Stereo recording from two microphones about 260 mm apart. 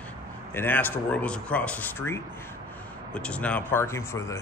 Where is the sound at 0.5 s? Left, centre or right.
Centre.